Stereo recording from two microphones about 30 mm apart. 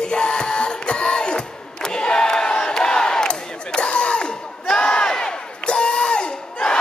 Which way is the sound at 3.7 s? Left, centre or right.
Left.